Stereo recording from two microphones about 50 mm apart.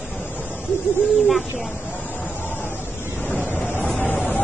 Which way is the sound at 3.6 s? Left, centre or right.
Left.